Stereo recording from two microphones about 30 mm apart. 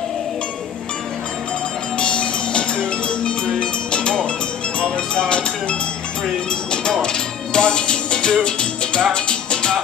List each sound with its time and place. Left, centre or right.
2.0 s music: left